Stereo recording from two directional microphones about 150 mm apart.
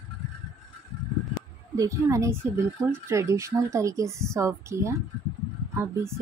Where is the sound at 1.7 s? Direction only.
20° right (ahead or behind).